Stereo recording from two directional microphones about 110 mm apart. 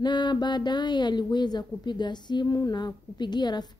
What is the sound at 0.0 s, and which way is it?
Speech, 40° left (ahead or behind).